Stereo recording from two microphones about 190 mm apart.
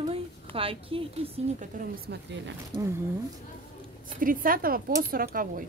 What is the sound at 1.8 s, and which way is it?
Speech, 65° right (ahead or behind).